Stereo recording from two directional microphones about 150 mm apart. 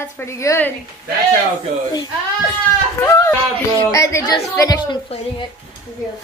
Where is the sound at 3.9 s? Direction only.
20° left (ahead or behind).